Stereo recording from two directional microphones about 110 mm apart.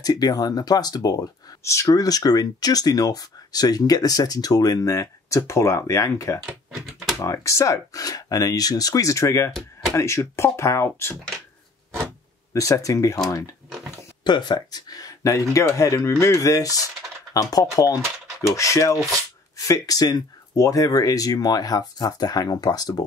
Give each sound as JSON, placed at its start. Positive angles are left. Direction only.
{"t": 0.0, "sound": "speech", "side_deg": 35}
{"t": 6.7, "sound": "speech", "side_deg": 0}
{"t": 7.2, "sound": "speech", "side_deg": 25}
{"t": 9.6, "sound": "speech", "side_deg": 5}
{"t": 9.9, "sound": "speech", "side_deg": 25}
{"t": 12.5, "sound": "speech", "side_deg": 30}
{"t": 13.7, "sound": "a sound", "side_deg": 0}
{"t": 14.2, "sound": "speech", "side_deg": 40}